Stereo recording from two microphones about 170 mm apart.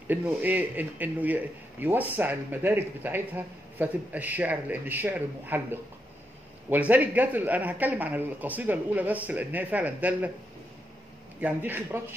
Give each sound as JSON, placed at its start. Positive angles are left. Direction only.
{"t": 0.1, "sound": "speech", "side_deg": -10}
{"t": 11.4, "sound": "speech", "side_deg": -10}